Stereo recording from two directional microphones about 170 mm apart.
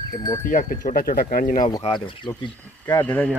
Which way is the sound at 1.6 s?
25° left (ahead or behind).